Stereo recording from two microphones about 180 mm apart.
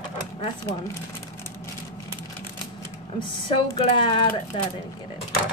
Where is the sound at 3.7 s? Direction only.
25° left (ahead or behind).